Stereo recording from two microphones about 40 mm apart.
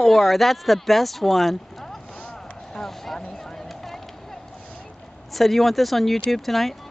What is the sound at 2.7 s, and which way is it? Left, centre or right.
Vehicle, centre.